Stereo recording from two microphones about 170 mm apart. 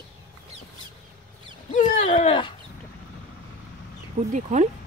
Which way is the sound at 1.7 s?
45° left (ahead or behind).